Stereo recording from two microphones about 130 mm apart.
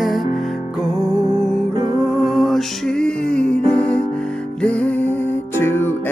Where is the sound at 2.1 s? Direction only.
Centre (ahead or behind).